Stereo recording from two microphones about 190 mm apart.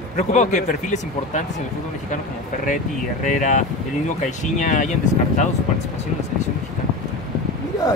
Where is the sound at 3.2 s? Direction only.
40° left (ahead or behind).